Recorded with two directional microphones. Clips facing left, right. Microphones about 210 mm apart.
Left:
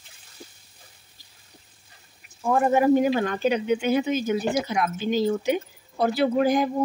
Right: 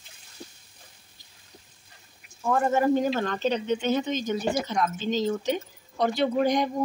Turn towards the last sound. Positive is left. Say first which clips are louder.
# left 3 dB
turn(degrees=5)  # may be behind; listen again after turning